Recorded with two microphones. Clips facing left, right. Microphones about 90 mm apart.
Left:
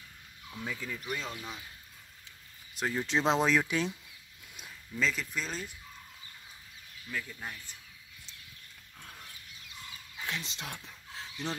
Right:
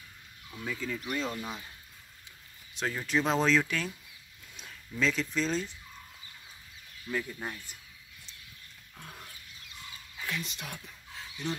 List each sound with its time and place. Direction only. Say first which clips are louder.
0.7 s speech: right 3 dB; 10° left (ahead or behind)
2.9 s speech: left 1 dB; 15° left (ahead or behind)
4.6 s speech: right 1 dB; 5° left (ahead or behind)
7.1 s speech: right 5 dB; 20° right (ahead or behind)
10.2 s speech: right 1 dB; 25° left (ahead or behind)